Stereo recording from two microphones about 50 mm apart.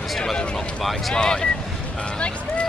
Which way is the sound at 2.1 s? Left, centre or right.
Left.